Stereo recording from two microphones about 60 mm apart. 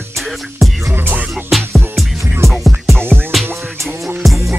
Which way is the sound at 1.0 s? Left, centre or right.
Right.